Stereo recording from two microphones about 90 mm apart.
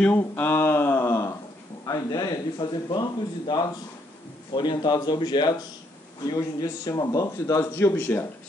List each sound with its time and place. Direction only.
0.2 s a sound: 20° left (ahead or behind)
1.9 s speech: 45° left (ahead or behind)
6.2 s a man's voice: 40° left (ahead or behind); by 8.3 s 25° left (ahead or behind)